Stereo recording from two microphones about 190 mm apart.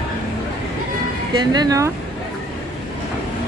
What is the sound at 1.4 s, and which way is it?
Speech, 20° right (ahead or behind).